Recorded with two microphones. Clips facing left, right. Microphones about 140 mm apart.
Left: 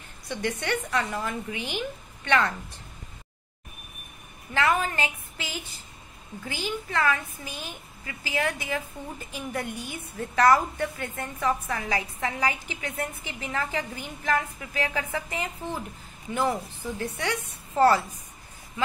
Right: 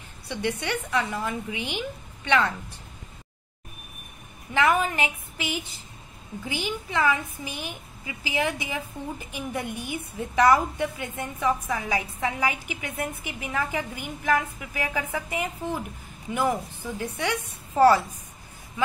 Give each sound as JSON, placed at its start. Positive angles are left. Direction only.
{"t": 0.3, "sound": "a woman's voice", "side_deg": -15}
{"t": 4.6, "sound": "a woman's voice", "side_deg": -15}